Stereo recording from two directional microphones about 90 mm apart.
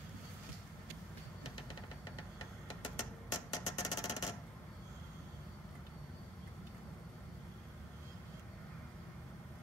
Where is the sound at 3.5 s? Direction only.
45° left (ahead or behind).